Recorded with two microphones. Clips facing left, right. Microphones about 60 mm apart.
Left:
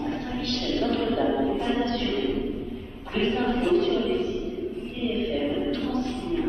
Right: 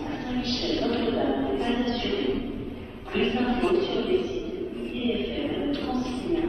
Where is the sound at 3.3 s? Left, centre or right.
Right.